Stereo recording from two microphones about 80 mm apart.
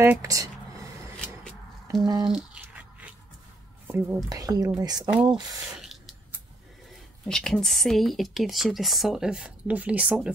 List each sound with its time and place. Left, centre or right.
0.2 s speech: right
1.1 s a sound: centre
2.2 s squish: centre
3.8 s speech: right
4.3 s speech: right
5.1 s speech: centre
5.8 s a sound: centre
7.2 s speech: centre